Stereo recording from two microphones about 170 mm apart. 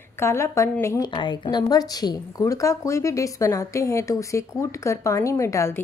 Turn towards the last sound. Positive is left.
turn(degrees=15)  # may be behind; listen again after turning